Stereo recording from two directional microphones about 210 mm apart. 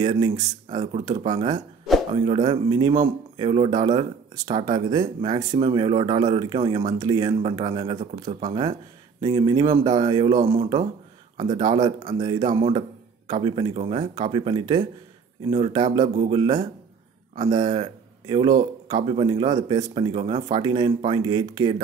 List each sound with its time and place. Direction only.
0.0 s speech: 20° right (ahead or behind)